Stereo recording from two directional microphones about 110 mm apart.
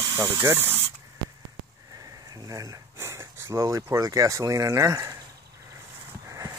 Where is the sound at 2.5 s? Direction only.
30° right (ahead or behind).